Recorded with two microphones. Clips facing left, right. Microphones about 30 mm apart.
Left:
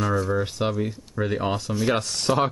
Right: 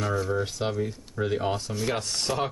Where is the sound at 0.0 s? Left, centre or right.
Centre.